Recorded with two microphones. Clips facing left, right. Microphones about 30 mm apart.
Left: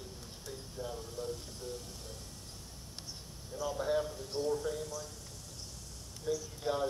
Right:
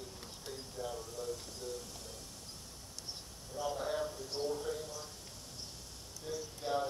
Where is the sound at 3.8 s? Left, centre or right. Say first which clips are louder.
Left 7 dB; centre.